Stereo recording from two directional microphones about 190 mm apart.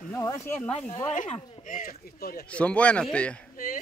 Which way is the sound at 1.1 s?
45° left (ahead or behind).